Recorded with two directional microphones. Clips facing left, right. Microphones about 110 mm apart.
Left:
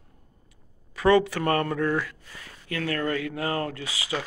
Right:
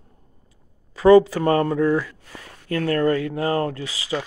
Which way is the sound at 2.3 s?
40° right (ahead or behind).